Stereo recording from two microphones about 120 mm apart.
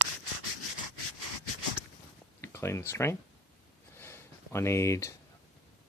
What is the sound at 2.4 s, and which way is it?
Speech, 20° left (ahead or behind).